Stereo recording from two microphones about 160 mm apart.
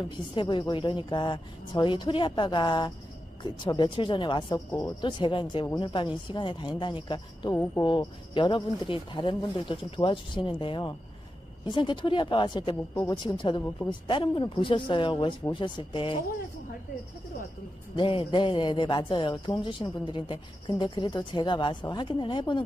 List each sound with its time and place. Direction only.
0.3 s a man's voice: 30° left (ahead or behind)
4.6 s a man's voice: 20° left (ahead or behind)
5.0 s a man's voice: 30° left (ahead or behind)
17.9 s a man's voice: 30° left (ahead or behind)